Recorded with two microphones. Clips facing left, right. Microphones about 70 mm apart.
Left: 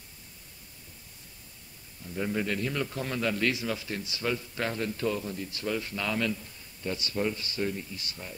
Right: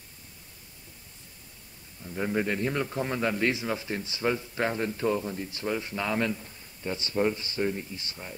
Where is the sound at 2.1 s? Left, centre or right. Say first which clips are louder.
Right 2 dB; right.